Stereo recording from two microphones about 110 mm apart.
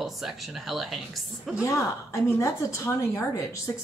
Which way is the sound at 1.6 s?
30° left (ahead or behind).